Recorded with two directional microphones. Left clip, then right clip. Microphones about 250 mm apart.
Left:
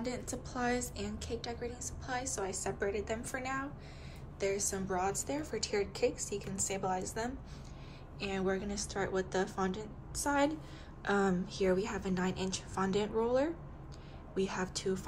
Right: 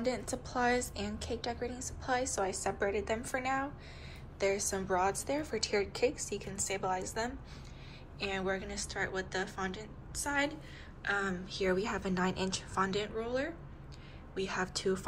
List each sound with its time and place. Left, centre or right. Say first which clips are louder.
0.0 s a woman's voice: right 5 dB; centre